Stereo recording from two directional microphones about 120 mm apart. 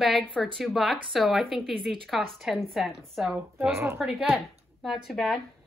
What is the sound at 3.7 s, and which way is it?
Speech, 20° right (ahead or behind).